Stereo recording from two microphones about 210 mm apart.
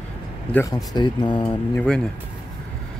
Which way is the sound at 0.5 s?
15° left (ahead or behind).